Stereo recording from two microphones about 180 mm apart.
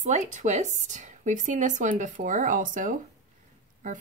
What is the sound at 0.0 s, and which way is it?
A woman's voice, 40° right (ahead or behind).